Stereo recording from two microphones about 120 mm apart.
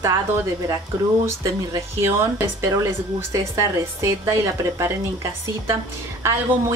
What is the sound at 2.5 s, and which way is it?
A woman's voice, 30° right (ahead or behind).